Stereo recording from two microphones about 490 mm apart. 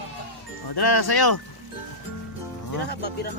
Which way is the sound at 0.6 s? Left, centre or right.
Left.